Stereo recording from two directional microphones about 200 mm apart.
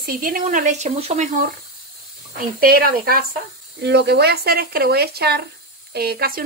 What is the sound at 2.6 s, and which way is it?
Speech, 45° right (ahead or behind).